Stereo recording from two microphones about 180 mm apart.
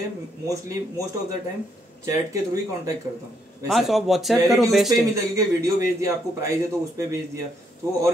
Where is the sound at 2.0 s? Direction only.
20° right (ahead or behind).